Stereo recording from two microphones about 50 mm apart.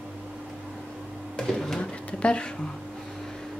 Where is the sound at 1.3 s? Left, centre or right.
Centre.